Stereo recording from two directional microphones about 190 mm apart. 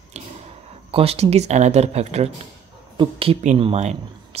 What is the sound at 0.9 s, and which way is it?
Speech, 30° right (ahead or behind).